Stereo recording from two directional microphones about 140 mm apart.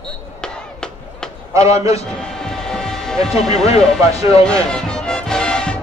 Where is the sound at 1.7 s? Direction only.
20° right (ahead or behind).